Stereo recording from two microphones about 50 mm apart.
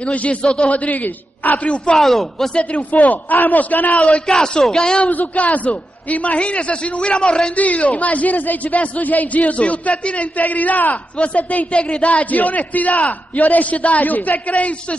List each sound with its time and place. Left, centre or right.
0.0 s a man's voice: left
0.7 s a man's voice: left
2.0 s speech: centre
2.5 s a man's voice: left
4.3 s a man's voice: centre
5.0 s a man's voice: left